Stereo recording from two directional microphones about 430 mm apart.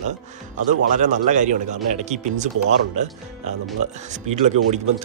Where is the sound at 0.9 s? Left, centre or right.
Centre.